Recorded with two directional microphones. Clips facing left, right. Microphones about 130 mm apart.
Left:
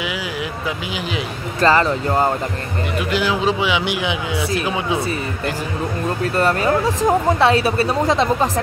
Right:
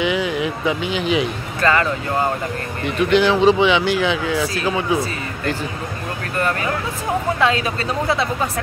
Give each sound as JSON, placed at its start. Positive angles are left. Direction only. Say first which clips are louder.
{"t": 0.0, "sound": "speech", "louder": "right 6 dB", "side_deg": 5}
{"t": 1.6, "sound": "a woman's voice", "louder": "left 3 dB", "side_deg": 30}
{"t": 3.0, "sound": "speech", "louder": "right 6 dB", "side_deg": 5}
{"t": 7.1, "sound": "a woman's voice", "louder": "left 3 dB", "side_deg": 35}